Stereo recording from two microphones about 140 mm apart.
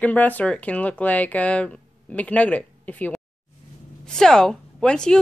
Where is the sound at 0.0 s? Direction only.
10° left (ahead or behind).